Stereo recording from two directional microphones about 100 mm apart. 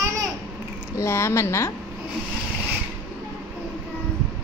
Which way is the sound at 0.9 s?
25° left (ahead or behind).